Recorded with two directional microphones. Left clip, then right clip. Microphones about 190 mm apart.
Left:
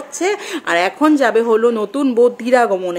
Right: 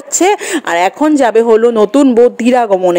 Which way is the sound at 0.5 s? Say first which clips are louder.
Right 5 dB; 30° right (ahead or behind).